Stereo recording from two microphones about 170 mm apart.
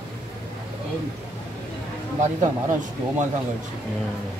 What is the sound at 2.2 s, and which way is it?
Speech, 45° right (ahead or behind).